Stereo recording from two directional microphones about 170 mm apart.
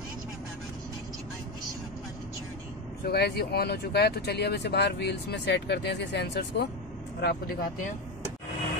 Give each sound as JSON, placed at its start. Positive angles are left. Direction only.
{"t": 3.1, "sound": "speech", "side_deg": 70}